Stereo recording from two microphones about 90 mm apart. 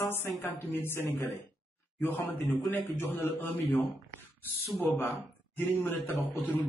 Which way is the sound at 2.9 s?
25° left (ahead or behind).